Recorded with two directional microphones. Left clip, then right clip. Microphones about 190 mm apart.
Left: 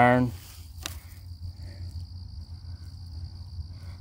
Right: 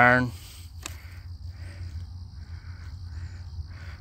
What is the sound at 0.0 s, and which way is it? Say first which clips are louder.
Speech: right 2 dB; 20° left (ahead or behind).